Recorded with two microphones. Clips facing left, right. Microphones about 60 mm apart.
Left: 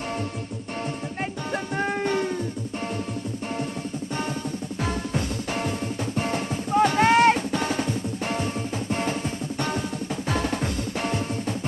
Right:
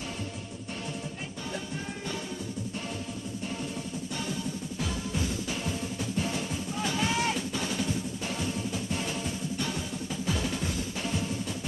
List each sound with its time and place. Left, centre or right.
1.5 s music: left
4.8 s music: left
10.2 s music: left